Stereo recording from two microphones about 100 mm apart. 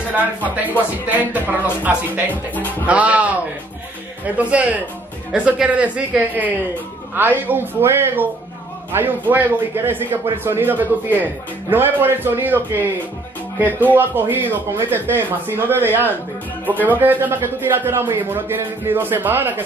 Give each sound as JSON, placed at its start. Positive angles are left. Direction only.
{"t": 0.1, "sound": "speech", "side_deg": -15}
{"t": 2.3, "sound": "speech", "side_deg": 15}
{"t": 2.9, "sound": "a man's voice", "side_deg": -15}
{"t": 13.8, "sound": "a man's voice", "side_deg": -20}